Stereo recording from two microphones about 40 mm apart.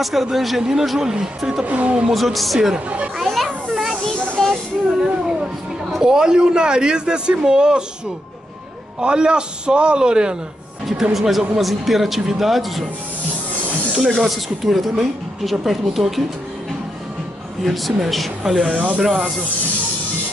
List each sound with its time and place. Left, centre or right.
0.0 s speech: centre
0.6 s speech: centre
1.7 s speech: right
2.1 s speech: centre
3.2 s children playing: centre
4.4 s a sound: centre
6.0 s a man's voice: centre
9.0 s a man's voice: right
10.9 s speech: centre
13.9 s speech: centre
17.6 s speech: centre